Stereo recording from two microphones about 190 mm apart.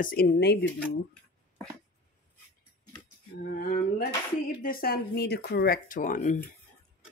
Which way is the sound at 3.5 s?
45° left (ahead or behind).